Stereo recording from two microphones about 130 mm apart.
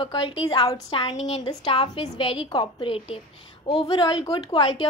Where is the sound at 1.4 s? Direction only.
35° left (ahead or behind).